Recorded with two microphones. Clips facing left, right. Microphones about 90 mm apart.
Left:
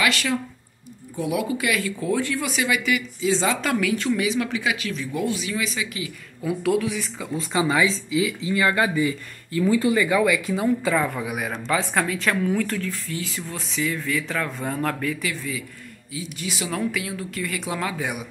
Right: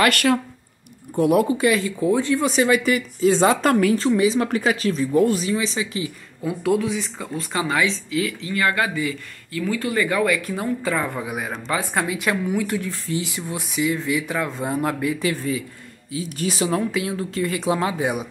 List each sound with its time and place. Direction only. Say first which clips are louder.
0.0 s speech: right 5 dB; 55° right (ahead or behind)
1.5 s speech: right 5 dB; 30° right (ahead or behind); by 3.7 s 50° right (ahead or behind)
3.7 s speech: right 5 dB; 35° right (ahead or behind)
5.5 s speech: right 4 dB; 30° right (ahead or behind)
6.6 s a woman's voice: right 2 dB; 5° right (ahead or behind)
7.5 s speech: left 1 dB; 15° left (ahead or behind)
9.9 s a woman's voice: even; 10° left (ahead or behind); by 15.1 s 15° right (ahead or behind)
15.2 s speech: right 6 dB; 30° right (ahead or behind)
16.1 s speech: right 6 dB; 40° right (ahead or behind); by 18.2 s 25° right (ahead or behind)